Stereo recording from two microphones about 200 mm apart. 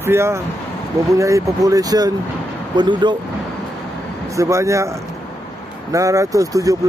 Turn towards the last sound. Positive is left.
turn(degrees=-15)  # may be behind; listen again after turning